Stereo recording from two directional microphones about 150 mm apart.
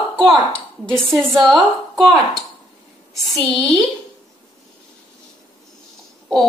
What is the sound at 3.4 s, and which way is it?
Speech, centre (ahead or behind).